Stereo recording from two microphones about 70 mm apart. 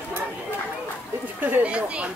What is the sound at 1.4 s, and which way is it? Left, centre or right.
Speech, right.